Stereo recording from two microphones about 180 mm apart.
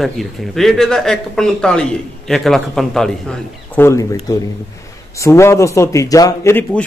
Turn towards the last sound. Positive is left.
turn(degrees=10)  # may be behind; listen again after turning